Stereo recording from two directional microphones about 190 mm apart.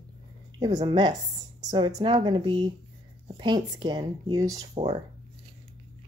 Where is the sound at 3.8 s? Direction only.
25° right (ahead or behind).